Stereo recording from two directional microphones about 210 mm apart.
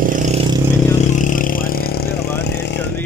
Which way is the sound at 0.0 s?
40° right (ahead or behind).